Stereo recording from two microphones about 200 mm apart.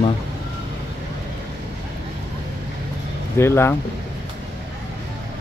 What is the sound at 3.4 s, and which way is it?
Speech, 10° left (ahead or behind).